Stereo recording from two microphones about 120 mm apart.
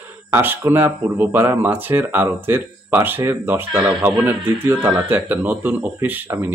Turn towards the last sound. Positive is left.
turn(degrees=-20)  # may be behind; listen again after turning